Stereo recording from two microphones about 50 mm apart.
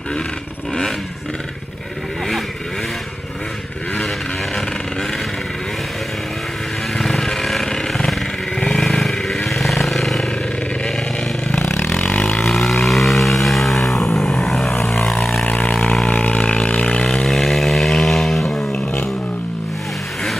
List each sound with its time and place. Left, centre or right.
7.0 s vehicle: centre
12.0 s vehicle: left
12.4 s vehicle: centre
13.9 s vehicle: left
15.0 s vehicle: left
16.1 s a sound: left
17.3 s chainsaw: centre